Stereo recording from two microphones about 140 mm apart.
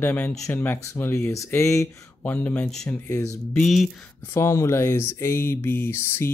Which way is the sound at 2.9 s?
25° left (ahead or behind).